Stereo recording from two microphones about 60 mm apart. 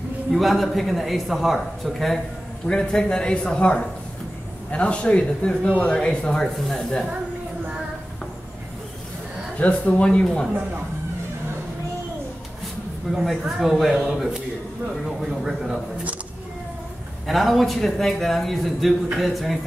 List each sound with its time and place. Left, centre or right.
0.3 s a man's voice: centre
2.7 s a man's voice: centre
9.6 s a man's voice: left
10.0 s a man's voice: centre
13.1 s a man's voice: centre
17.3 s a man's voice: centre